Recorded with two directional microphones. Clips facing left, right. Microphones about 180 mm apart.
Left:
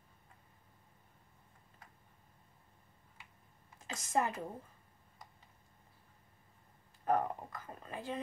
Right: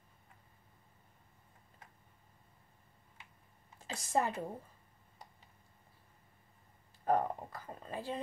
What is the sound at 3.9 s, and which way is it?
Speech, 30° right (ahead or behind).